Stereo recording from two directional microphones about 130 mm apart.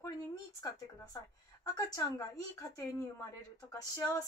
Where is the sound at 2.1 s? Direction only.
25° left (ahead or behind).